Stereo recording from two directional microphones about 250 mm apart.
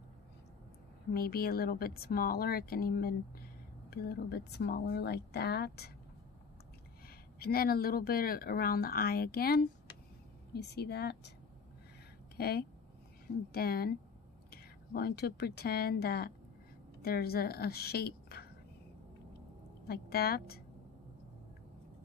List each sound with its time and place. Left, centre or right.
1.1 s speech: left
7.3 s speech: left
12.4 s a woman's voice: left
19.9 s speech: left